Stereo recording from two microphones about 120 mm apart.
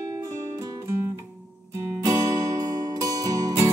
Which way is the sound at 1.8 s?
20° right (ahead or behind).